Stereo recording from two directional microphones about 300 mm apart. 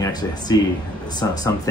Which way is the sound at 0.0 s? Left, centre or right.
Centre.